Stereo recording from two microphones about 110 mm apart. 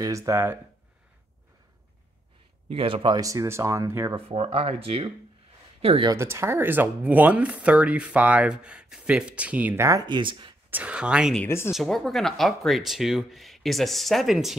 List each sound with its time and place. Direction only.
0.0 s speech: 30° right (ahead or behind)
2.7 s speech: 55° right (ahead or behind)
3.2 s speech: 30° right (ahead or behind)
4.1 s speech: 55° right (ahead or behind)
6.1 s speech: 25° right (ahead or behind)
10.0 s speech: 45° right (ahead or behind)
10.7 s speech: 10° right (ahead or behind)
11.4 s speech: 20° left (ahead or behind)
11.7 s speech: centre (ahead or behind)